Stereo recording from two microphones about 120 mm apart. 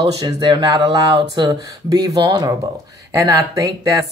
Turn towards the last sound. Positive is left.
turn(degrees=-25)  # may be behind; listen again after turning